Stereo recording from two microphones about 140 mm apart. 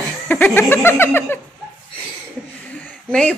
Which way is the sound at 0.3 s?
15° left (ahead or behind).